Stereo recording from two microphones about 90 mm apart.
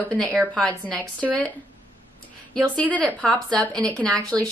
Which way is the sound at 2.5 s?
15° left (ahead or behind).